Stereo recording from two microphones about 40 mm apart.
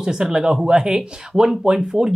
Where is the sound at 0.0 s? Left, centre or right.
Centre.